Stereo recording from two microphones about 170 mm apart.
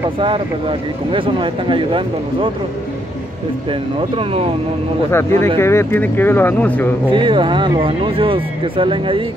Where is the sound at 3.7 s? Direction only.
35° right (ahead or behind).